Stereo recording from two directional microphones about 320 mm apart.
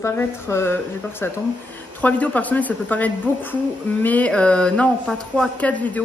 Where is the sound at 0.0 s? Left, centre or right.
Centre.